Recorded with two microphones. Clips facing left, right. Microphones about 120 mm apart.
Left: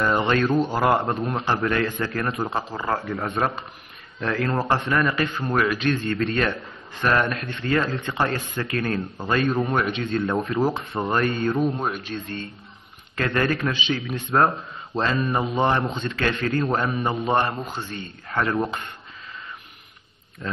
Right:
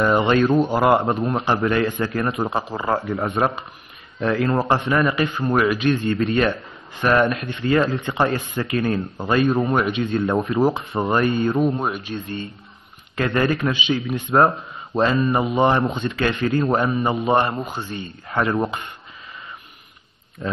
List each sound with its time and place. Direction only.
0.0 s speech: 15° right (ahead or behind)
20.4 s speech: 15° right (ahead or behind)